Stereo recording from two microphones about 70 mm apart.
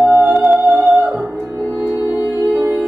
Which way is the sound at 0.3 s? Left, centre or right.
Centre.